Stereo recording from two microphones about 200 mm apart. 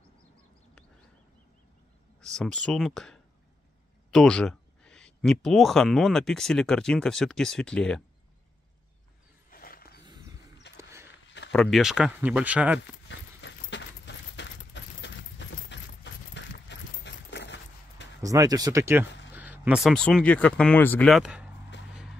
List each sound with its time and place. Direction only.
2.2 s speech: 5° left (ahead or behind)
9.5 s roaring cats: 45° left (ahead or behind)
10.0 s a sound: 20° right (ahead or behind)
11.5 s speech: centre (ahead or behind)
13.1 s keys jangling: 65° left (ahead or behind)
18.2 s speech: 15° right (ahead or behind)
21.7 s music: 60° left (ahead or behind)